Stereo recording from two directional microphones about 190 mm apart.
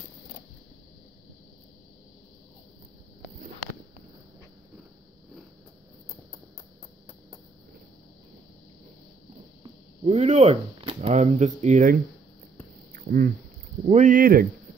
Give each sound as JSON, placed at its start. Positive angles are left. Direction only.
{"t": 9.6, "sound": "speech", "side_deg": -35}
{"t": 12.9, "sound": "a sound", "side_deg": -50}
{"t": 13.8, "sound": "speech", "side_deg": -40}